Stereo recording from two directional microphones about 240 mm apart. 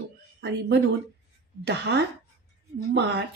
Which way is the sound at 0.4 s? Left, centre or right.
Right.